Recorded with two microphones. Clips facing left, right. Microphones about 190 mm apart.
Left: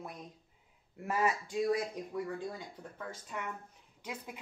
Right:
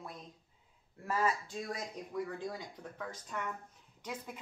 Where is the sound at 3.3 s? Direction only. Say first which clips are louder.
Right 1 dB; 10° left (ahead or behind).